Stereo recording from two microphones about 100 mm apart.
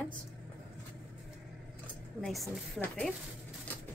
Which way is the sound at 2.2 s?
Centre (ahead or behind).